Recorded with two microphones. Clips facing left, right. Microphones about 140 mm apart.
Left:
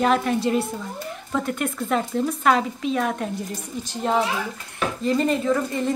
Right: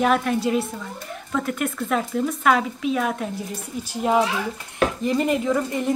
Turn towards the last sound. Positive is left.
turn(degrees=-15)  # may be behind; listen again after turning